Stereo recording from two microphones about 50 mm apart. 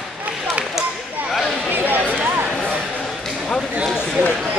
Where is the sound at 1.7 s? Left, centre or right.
Right.